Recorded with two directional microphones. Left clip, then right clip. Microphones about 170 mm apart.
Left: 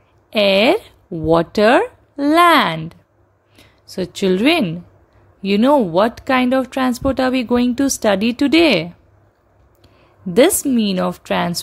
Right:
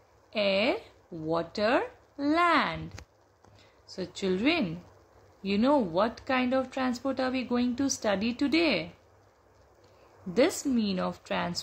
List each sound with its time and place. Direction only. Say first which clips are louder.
0.3 s speech: left 14 dB; 55° left (ahead or behind)
10.3 s speech: left 13 dB; 55° left (ahead or behind)